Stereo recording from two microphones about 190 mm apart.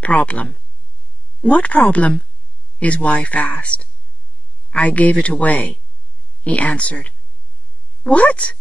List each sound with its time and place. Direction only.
0.0 s speech: 5° left (ahead or behind)